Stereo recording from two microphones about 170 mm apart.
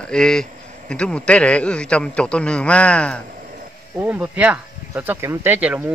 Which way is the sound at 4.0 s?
10° right (ahead or behind).